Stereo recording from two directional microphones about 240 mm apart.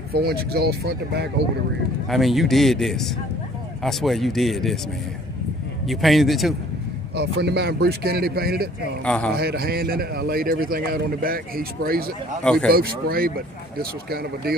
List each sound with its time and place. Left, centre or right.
0.1 s a man's voice: right
2.0 s a man's voice: centre
5.9 s a man's voice: centre
7.2 s a man's voice: right
9.0 s a man's voice: centre
9.4 s a man's voice: right
12.4 s a man's voice: centre
12.7 s a man's voice: right